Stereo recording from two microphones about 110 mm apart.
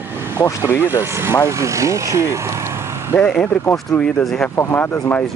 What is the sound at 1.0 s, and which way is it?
Speech, 20° right (ahead or behind).